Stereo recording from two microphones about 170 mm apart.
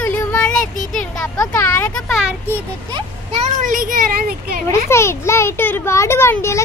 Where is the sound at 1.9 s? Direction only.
5° left (ahead or behind).